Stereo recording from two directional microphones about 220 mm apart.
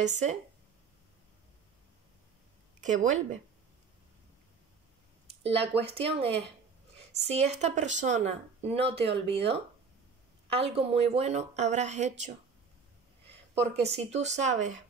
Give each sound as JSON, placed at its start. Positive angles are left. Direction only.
{"t": 0.0, "sound": "speech", "side_deg": -30}
{"t": 2.8, "sound": "speech", "side_deg": -35}
{"t": 5.4, "sound": "speech", "side_deg": -25}
{"t": 13.9, "sound": "speech", "side_deg": -30}